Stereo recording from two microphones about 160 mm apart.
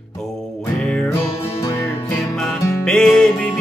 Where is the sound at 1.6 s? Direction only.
20° left (ahead or behind).